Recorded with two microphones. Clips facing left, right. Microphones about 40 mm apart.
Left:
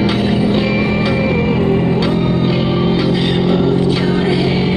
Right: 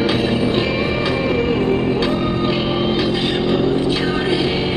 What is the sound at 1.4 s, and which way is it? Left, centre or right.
Music, centre.